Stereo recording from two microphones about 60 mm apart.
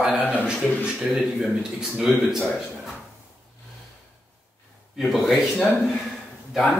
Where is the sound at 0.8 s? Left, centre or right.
Centre.